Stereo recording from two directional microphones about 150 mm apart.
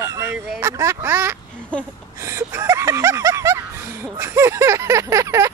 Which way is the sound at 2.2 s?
20° right (ahead or behind).